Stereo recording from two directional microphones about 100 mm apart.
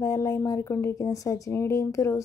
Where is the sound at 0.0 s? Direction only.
35° left (ahead or behind).